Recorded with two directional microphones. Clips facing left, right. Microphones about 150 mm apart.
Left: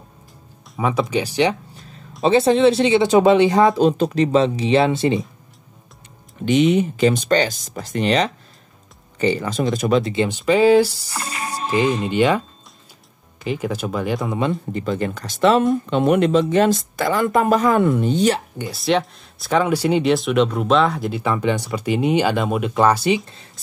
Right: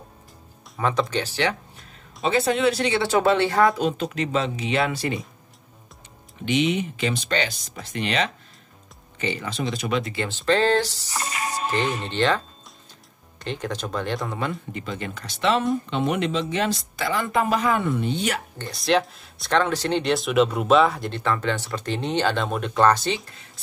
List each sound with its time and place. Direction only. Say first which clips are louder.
0.7 s speech: left 3 dB; 10° left (ahead or behind)
2.2 s speech: left 7 dB; 30° left (ahead or behind)
3.7 s speech: left 8 dB; 35° left (ahead or behind)
6.4 s speech: left 7 dB; 40° left (ahead or behind)
10.1 s speech: left 5 dB; 15° left (ahead or behind)
14.7 s speech: left 9 dB; 40° left (ahead or behind)
18.6 s speech: left 2 dB; 5° left (ahead or behind)
21.2 s speech: left 3 dB; 15° left (ahead or behind)